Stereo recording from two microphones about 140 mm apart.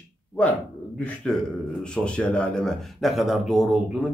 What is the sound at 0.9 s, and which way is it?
Speech, 5° left (ahead or behind).